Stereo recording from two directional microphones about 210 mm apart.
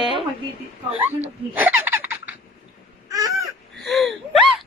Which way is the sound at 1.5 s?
10° right (ahead or behind).